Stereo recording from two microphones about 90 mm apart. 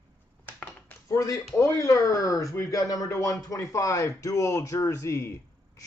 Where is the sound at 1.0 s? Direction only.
40° left (ahead or behind).